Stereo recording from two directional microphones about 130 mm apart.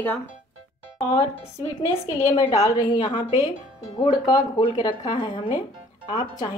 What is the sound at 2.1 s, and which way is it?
A woman's voice, 25° left (ahead or behind).